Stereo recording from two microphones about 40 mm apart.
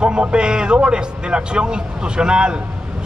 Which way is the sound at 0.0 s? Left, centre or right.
Right.